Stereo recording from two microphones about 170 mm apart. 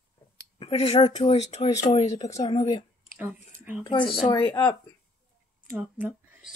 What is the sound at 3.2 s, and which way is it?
Speech, 10° right (ahead or behind).